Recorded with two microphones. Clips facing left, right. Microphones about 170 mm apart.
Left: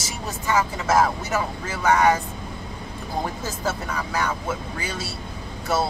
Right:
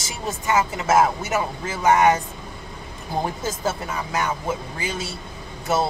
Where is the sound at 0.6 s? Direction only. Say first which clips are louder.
Right 1 dB; 20° right (ahead or behind).